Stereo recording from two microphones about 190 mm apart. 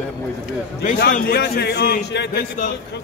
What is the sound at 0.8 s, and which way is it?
Speech, 50° left (ahead or behind).